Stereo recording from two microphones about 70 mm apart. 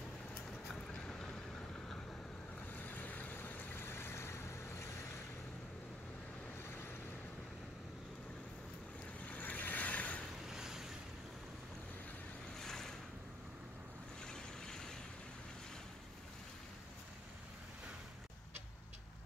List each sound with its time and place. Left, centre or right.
0.9 s boat: centre
2.8 s vehicle: left
9.2 s vehicle: left
10.5 s boat: centre
12.5 s boat: centre
14.2 s boat: centre